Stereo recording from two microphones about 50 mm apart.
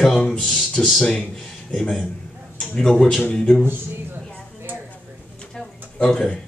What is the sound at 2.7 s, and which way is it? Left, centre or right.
Speech, centre.